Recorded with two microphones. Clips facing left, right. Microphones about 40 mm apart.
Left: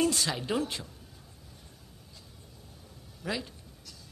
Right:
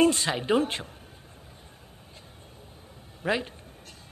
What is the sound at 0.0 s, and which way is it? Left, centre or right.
Speech, right.